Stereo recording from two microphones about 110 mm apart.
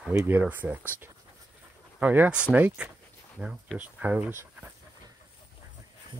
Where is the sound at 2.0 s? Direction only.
15° right (ahead or behind).